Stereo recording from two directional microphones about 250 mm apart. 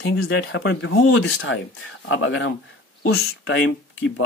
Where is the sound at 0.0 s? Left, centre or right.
Left.